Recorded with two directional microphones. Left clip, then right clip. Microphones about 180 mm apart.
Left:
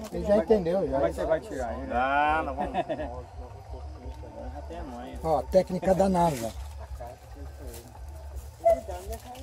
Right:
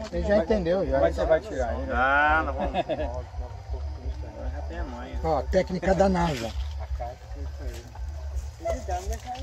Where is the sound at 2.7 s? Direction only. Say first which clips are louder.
Right 2 dB; 30° right (ahead or behind).